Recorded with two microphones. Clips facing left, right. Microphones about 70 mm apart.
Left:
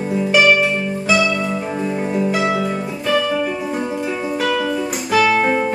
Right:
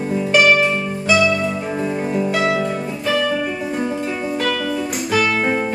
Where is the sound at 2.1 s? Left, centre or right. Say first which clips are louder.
Even; centre.